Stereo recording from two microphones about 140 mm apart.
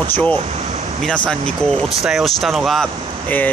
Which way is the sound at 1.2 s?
5° left (ahead or behind).